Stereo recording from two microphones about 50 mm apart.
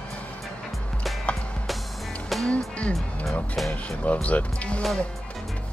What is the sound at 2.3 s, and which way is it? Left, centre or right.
Music, centre.